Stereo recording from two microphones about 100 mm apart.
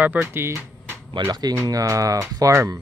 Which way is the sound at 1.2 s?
40° right (ahead or behind).